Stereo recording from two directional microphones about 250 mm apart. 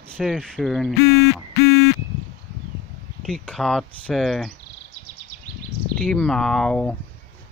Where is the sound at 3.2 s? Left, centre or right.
Centre.